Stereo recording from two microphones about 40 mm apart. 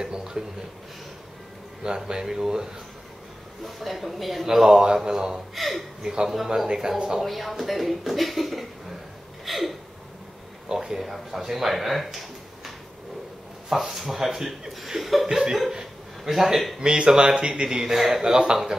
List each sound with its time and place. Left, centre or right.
0.0 s a sound: centre
2.0 s a man's voice: centre
3.6 s a man's voice: centre
5.5 s speech: centre
6.0 s a man's voice: centre
7.2 s speech: centre
10.7 s speech: centre
13.7 s a man's voice: centre
15.2 s a man's voice: centre
16.8 s a man's voice: centre